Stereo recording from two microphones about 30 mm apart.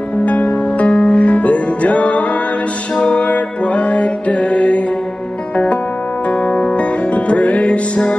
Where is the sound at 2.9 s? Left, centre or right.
Left.